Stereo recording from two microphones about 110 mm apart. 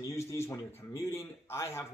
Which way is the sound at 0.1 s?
25° left (ahead or behind).